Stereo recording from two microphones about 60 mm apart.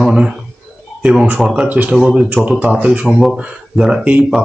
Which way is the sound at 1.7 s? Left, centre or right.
Right.